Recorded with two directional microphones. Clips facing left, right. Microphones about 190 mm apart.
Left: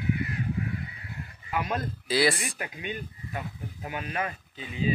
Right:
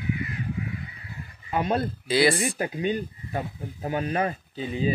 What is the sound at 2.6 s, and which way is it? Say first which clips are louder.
Speech: right 9 dB; 35° right (ahead or behind).